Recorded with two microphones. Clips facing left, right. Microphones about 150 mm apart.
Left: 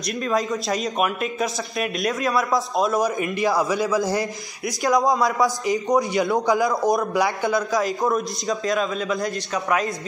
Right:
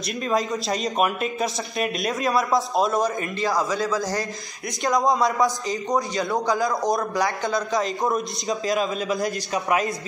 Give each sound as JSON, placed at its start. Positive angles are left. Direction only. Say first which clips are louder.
{"t": 0.2, "sound": "a man's voice", "louder": "even", "side_deg": 0}
{"t": 3.2, "sound": "a man's voice", "louder": "left 3 dB", "side_deg": 15}
{"t": 4.6, "sound": "a man's voice", "louder": "left 2 dB", "side_deg": 0}
{"t": 5.7, "sound": "a man's voice", "louder": "left 4 dB", "side_deg": 15}
{"t": 7.7, "sound": "a man's voice", "louder": "left 2 dB", "side_deg": 0}
{"t": 9.5, "sound": "speech", "louder": "even", "side_deg": -15}